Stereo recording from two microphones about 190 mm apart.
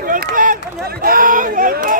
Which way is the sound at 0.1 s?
45° right (ahead or behind).